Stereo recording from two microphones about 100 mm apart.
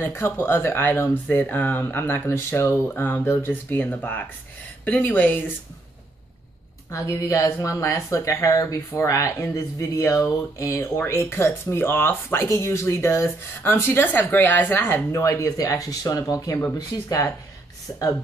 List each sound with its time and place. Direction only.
0.0 s speech: 25° left (ahead or behind)
6.9 s speech: 35° left (ahead or behind)